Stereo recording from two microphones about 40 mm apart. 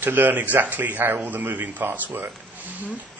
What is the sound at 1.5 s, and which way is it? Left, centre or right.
Speech, right.